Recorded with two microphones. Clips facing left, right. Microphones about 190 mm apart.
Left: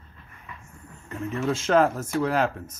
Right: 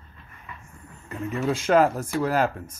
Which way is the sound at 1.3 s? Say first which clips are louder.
Right 1 dB; 15° right (ahead or behind).